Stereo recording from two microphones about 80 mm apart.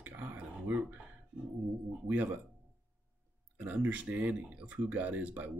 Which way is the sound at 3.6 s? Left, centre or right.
Centre.